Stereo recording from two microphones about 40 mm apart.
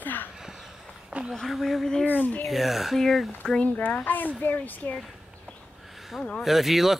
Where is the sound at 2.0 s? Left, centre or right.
Left.